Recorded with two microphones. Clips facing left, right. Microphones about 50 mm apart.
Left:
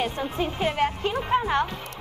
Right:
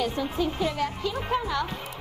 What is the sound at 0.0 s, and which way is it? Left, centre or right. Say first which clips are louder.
A woman's voice: even; left.